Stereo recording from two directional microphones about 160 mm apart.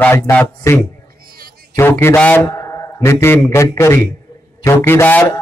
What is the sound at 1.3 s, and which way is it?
Music, 70° right (ahead or behind).